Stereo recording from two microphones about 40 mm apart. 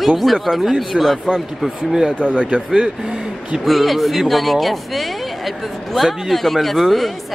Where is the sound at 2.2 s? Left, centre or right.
Right.